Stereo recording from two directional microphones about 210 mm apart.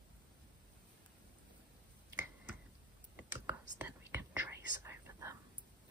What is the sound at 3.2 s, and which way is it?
Whispering, 10° right (ahead or behind).